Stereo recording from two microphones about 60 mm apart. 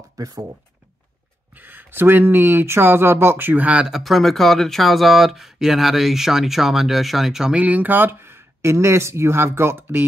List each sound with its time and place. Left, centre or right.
0.2 s speech: right
1.5 s speech: right
3.6 s speech: centre
3.9 s speech: centre
7.5 s speech: right